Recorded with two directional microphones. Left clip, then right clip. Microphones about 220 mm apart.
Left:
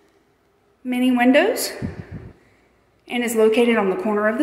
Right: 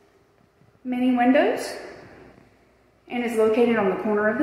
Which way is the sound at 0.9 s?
25° left (ahead or behind).